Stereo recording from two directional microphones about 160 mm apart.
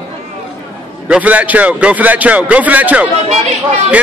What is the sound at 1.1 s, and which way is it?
Speech, 10° right (ahead or behind).